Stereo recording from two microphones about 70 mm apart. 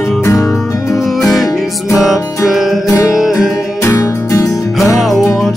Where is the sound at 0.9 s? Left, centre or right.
Centre.